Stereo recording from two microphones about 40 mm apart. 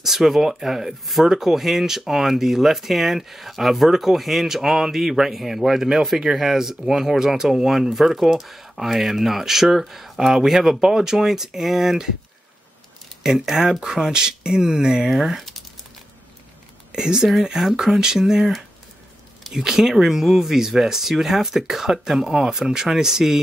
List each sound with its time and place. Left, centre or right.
0.0 s speech: centre
13.2 s speech: centre
15.0 s speech: centre
16.9 s speech: centre
19.4 s speech: centre